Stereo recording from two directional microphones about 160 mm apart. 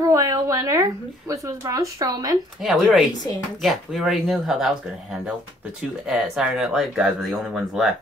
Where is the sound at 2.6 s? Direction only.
Centre (ahead or behind).